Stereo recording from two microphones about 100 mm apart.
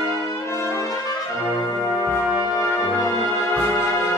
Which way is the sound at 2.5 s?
30° left (ahead or behind).